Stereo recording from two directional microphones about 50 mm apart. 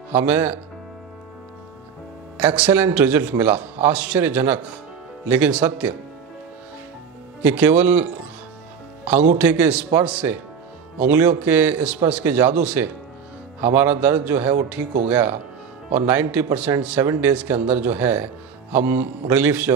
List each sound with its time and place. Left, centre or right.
0.1 s speech: right
2.3 s a man's voice: right
7.4 s a man's voice: right